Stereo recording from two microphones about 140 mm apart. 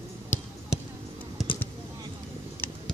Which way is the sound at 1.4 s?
Centre (ahead or behind).